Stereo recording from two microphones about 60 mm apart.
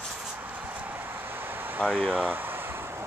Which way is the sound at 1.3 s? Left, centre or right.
Right.